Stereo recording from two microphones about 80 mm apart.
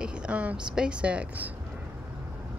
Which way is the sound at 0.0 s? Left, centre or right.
Centre.